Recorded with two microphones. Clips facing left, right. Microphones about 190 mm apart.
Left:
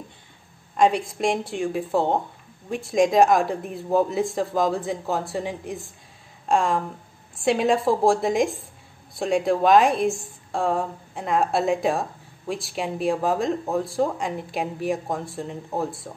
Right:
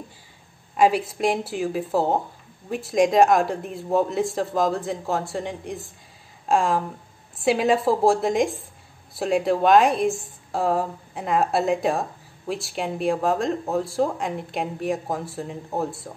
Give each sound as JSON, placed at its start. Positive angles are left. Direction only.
{"t": 0.7, "sound": "a woman's voice", "side_deg": -5}